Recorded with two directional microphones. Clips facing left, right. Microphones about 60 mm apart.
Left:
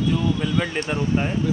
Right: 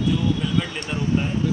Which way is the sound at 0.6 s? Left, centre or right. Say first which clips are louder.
Left 3 dB; left.